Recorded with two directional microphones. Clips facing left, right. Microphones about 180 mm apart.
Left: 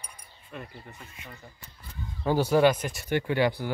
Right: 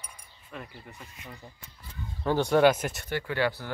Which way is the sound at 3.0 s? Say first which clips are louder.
Left 4 dB; 15° left (ahead or behind).